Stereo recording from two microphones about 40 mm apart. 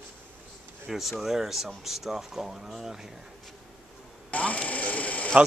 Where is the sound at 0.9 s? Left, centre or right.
Centre.